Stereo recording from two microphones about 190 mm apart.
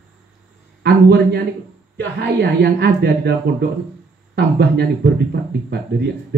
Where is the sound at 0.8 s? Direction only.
60° right (ahead or behind).